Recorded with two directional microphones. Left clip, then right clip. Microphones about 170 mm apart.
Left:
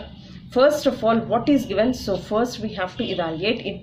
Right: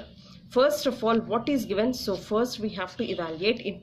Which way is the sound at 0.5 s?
40° right (ahead or behind).